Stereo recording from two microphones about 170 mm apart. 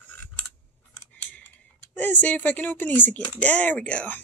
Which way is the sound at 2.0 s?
10° left (ahead or behind).